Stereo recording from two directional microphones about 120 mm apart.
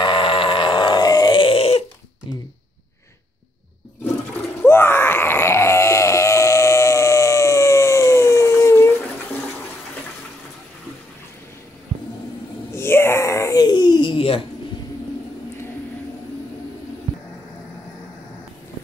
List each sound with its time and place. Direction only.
0.0 s a sound: 45° left (ahead or behind)
4.0 s toilet flush: 15° left (ahead or behind)
12.7 s wail: 20° left (ahead or behind); by 14.4 s 50° left (ahead or behind)